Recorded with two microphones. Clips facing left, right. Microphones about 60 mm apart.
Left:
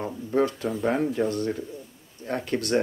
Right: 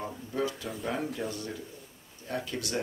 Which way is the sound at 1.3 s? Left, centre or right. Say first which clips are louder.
Left 10 dB; left.